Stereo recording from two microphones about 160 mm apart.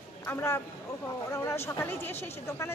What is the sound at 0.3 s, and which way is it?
Speech, 15° left (ahead or behind).